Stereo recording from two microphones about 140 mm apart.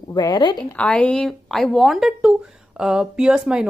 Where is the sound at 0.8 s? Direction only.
5° left (ahead or behind).